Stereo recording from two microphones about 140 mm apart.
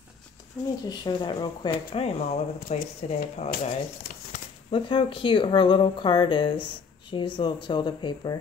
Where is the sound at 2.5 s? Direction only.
90° left.